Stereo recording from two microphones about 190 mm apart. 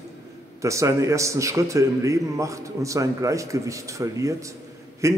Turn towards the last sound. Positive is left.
turn(degrees=-15)  # may be behind; listen again after turning